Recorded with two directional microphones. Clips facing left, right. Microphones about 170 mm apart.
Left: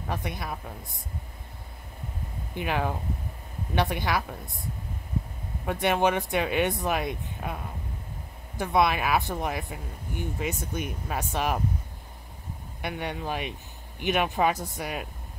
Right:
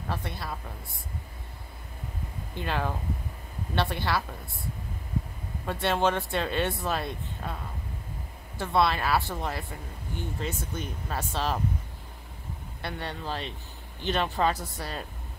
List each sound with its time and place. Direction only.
0.1 s speech: 15° left (ahead or behind)
2.5 s speech: 15° left (ahead or behind)
5.7 s speech: 15° left (ahead or behind)
12.8 s speech: 15° left (ahead or behind)